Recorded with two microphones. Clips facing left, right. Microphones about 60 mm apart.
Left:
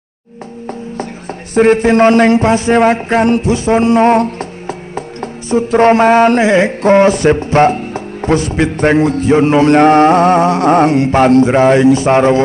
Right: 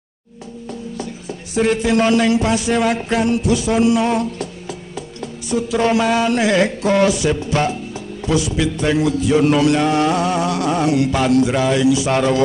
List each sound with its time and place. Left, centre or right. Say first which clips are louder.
1.5 s speech: left 8 dB; left
6.4 s mantra: left 5 dB; left
6.8 s speech: left 7 dB; left